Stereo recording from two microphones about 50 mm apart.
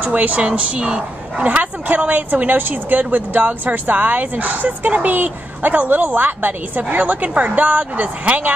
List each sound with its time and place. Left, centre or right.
0.0 s speech: right